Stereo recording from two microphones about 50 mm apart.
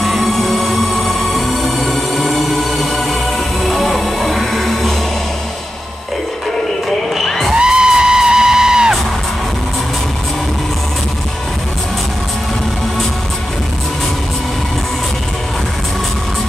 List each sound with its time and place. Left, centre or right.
0.0 s music: centre
7.2 s music: centre
7.5 s music: centre